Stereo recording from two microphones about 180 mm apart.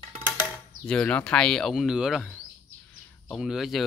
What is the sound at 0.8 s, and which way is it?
Speech, 5° left (ahead or behind).